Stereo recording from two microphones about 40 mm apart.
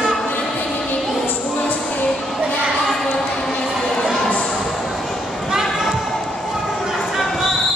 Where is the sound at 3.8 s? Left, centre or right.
Centre.